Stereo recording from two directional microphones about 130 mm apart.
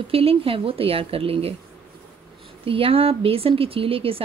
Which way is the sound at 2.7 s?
45° right (ahead or behind).